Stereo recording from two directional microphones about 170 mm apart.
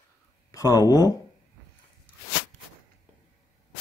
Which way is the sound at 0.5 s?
20° left (ahead or behind).